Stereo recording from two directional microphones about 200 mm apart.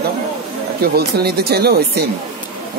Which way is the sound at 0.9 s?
50° right (ahead or behind).